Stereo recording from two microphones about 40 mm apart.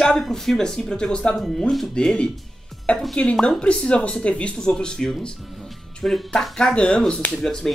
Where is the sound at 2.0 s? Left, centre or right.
Left.